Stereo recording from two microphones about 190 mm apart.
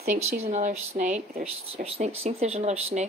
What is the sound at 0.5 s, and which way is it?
A woman's voice, 40° right (ahead or behind).